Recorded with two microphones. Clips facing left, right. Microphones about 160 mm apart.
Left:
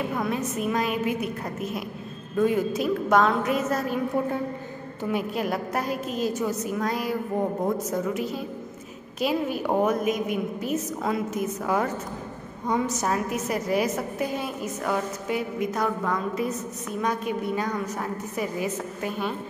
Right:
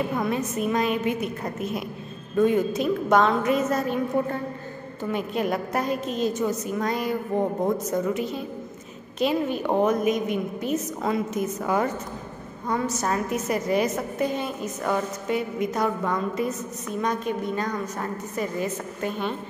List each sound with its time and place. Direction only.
0.1 s a woman's voice: centre (ahead or behind)
12.6 s a woman's voice: 15° left (ahead or behind)
13.0 s a woman's voice: 5° left (ahead or behind)